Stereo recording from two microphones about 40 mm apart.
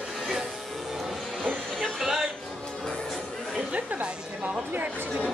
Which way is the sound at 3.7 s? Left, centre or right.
Right.